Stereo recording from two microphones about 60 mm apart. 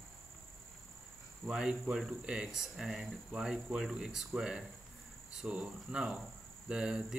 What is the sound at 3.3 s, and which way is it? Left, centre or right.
Speech, right.